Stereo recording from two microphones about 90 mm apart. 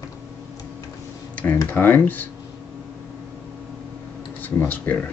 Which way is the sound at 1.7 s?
20° left (ahead or behind).